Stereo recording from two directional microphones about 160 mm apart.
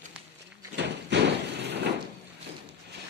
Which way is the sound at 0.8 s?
90° right.